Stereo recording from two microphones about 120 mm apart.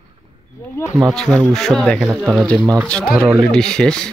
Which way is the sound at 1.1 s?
5° left (ahead or behind).